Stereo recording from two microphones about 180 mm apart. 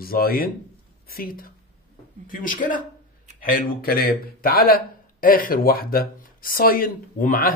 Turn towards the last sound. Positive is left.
turn(degrees=50)  # may be behind; listen again after turning